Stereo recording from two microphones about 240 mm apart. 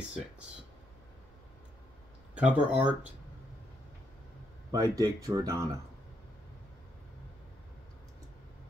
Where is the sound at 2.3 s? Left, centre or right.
Centre.